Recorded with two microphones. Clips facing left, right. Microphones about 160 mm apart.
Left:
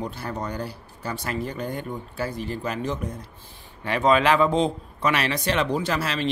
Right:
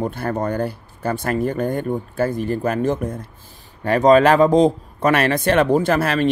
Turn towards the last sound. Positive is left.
turn(degrees=-55)  # may be behind; listen again after turning